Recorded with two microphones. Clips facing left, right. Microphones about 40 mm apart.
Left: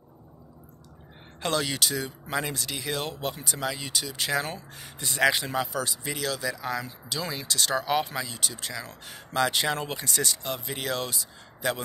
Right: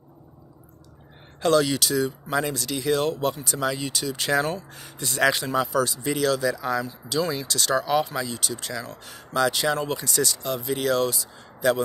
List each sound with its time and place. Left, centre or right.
1.4 s speech: centre